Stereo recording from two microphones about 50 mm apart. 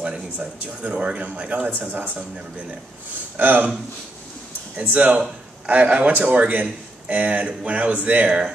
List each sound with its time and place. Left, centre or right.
0.8 s speech: right
1.7 s speech: right
3.3 s speech: right
4.7 s speech: right
8.3 s speech: centre